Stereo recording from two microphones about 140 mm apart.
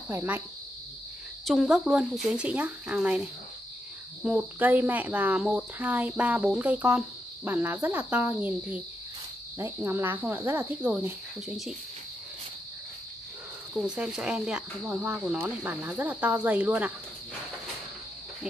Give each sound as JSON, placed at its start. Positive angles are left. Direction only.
{"t": 0.1, "sound": "speech", "side_deg": -15}
{"t": 1.4, "sound": "speech", "side_deg": 0}
{"t": 11.4, "sound": "speech", "side_deg": 0}
{"t": 13.7, "sound": "speech", "side_deg": -5}